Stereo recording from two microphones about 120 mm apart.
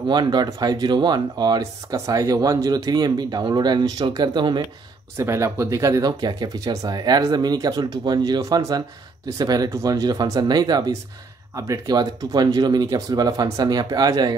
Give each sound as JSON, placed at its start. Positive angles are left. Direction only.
{"t": 0.1, "sound": "speech", "side_deg": -35}
{"t": 5.1, "sound": "speech", "side_deg": -25}